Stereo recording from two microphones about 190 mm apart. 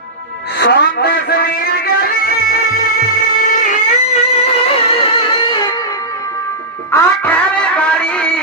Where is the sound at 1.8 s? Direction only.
50° left (ahead or behind).